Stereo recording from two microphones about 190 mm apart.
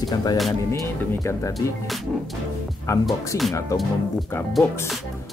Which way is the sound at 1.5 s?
Centre (ahead or behind).